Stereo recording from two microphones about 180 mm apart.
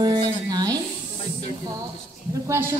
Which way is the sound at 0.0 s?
25° right (ahead or behind).